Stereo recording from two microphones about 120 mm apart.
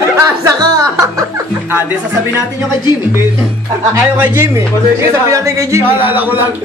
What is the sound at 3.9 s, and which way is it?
A man's voice, 20° right (ahead or behind).